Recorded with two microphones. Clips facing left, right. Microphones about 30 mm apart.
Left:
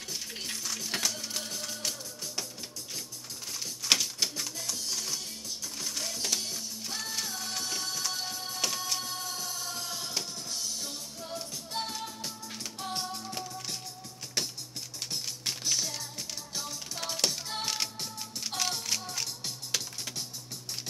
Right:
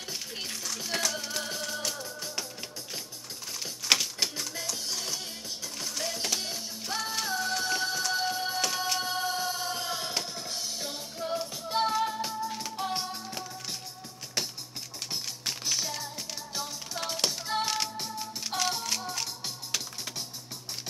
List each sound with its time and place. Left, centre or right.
0.1 s a sound: centre
1.2 s music: centre
3.9 s typewriter: centre
4.7 s music: centre